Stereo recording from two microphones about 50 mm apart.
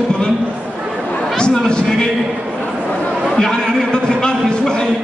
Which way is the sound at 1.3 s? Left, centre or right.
Centre.